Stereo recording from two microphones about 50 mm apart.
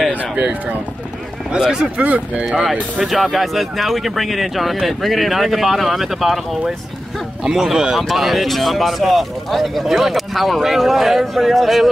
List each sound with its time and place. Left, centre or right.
0.1 s speech: right
1.5 s speech: centre
2.0 s speech: right
3.1 s speech: centre